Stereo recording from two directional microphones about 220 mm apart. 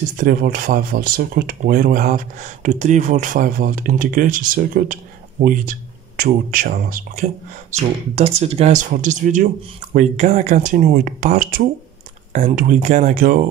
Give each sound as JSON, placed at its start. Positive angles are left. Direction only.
{"t": 0.2, "sound": "speech", "side_deg": -40}
{"t": 7.7, "sound": "speech", "side_deg": -30}